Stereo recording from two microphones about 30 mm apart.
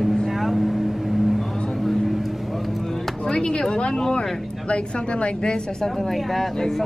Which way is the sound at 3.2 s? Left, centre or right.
Left.